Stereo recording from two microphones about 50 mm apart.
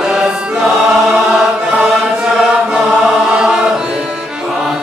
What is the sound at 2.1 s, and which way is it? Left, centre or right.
Chant, centre.